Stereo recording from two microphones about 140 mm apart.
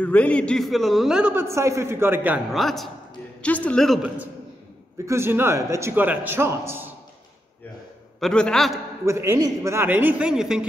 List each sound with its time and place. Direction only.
0.0 s a man's voice: 10° left (ahead or behind)
1.3 s a man's voice: 20° right (ahead or behind)
2.5 s a man's voice: centre (ahead or behind)
4.9 s a man's voice: 20° right (ahead or behind)
8.2 s a man's voice: 5° left (ahead or behind)
9.0 s a man's voice: 20° right (ahead or behind)